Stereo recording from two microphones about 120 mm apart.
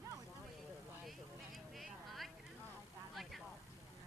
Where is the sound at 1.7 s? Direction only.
Centre (ahead or behind).